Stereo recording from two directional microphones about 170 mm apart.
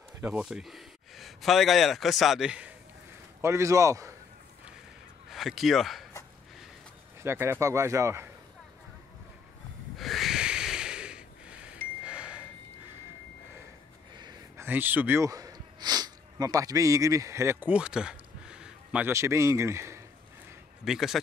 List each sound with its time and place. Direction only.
0.2 s speech: 5° right (ahead or behind)
3.3 s speech: 15° right (ahead or behind)
5.3 s speech: centre (ahead or behind)
7.2 s speech: 15° right (ahead or behind)
9.9 s wheeze: centre (ahead or behind)
12.0 s a sound: 5° right (ahead or behind)
14.6 s speech: 10° right (ahead or behind)
20.8 s speech: centre (ahead or behind)